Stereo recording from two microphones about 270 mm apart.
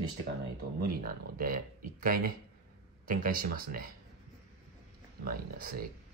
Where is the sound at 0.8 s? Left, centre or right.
Right.